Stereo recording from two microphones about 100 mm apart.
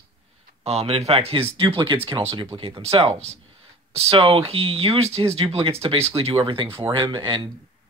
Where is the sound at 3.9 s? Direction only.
80° right; by 6.6 s 65° right (ahead or behind).